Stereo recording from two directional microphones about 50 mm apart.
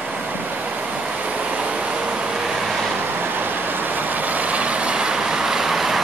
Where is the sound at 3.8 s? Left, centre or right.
Right.